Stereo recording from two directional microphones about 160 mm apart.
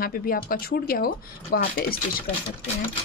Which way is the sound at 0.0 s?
65° left (ahead or behind).